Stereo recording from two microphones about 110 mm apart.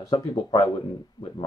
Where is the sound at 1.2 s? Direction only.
40° left (ahead or behind).